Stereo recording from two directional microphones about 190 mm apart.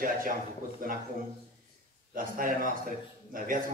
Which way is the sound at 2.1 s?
45° right (ahead or behind).